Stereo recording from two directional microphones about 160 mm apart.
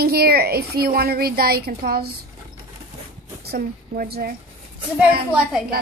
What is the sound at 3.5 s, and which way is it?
Speech, 65° right (ahead or behind).